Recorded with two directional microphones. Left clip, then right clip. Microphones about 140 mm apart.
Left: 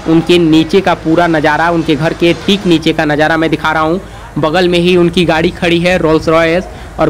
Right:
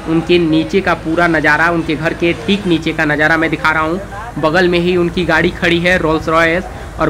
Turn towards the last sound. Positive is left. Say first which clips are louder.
# left 4 dB
turn(degrees=30)  # may be behind; listen again after turning